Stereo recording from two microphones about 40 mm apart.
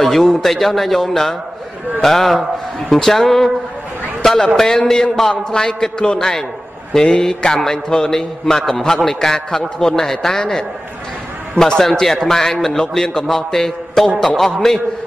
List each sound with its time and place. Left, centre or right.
0.0 s a man's voice: centre
4.2 s a sound: centre
4.6 s a man's voice: centre
11.5 s a man's voice: centre